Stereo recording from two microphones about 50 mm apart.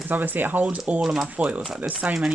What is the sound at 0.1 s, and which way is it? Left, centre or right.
Speech, right.